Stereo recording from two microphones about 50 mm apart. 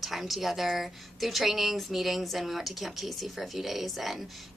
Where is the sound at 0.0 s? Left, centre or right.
Centre.